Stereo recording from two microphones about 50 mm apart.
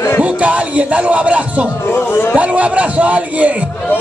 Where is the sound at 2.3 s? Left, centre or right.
Right.